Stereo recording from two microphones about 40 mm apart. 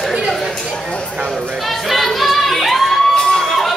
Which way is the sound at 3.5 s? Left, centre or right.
Centre.